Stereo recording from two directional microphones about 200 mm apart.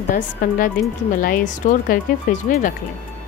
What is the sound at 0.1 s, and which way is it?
Speech, 45° left (ahead or behind).